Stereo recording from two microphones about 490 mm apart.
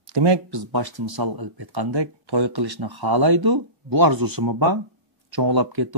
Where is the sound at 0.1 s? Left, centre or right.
Right.